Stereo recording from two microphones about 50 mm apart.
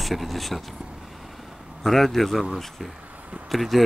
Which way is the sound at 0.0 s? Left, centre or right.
Centre.